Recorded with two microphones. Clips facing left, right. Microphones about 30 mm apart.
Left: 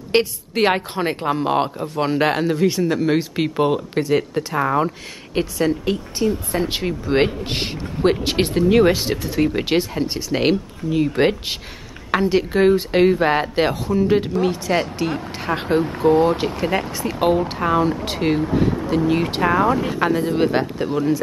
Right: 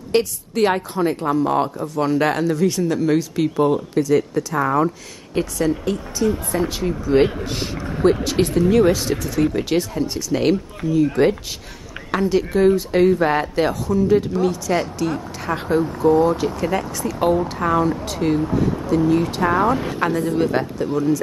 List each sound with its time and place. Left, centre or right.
0.1 s a woman's voice: left
12.1 s a woman's voice: left
15.7 s speech: left
16.3 s a woman's voice: left
17.6 s speech: centre
18.0 s a woman's voice: left
19.8 s speech: centre; by 21.2 s left